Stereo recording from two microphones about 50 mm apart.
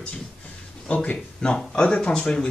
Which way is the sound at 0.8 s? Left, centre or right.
Left.